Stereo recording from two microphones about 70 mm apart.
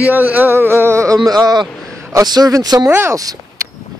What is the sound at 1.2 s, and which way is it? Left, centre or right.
Speech, right.